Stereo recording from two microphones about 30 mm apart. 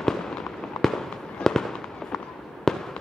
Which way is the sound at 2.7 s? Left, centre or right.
Centre.